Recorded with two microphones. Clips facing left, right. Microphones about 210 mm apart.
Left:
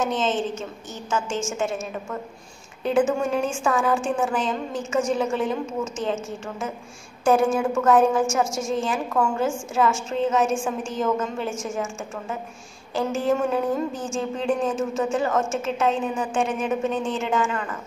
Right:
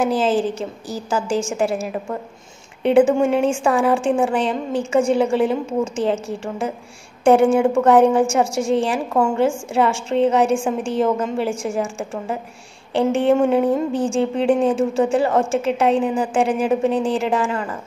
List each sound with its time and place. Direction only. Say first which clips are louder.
0.0 s speech: right 6 dB; 30° right (ahead or behind)
2.9 s a woman's voice: right 7 dB; 30° right (ahead or behind)